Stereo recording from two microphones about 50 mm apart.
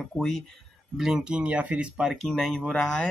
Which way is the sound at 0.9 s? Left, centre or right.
Centre.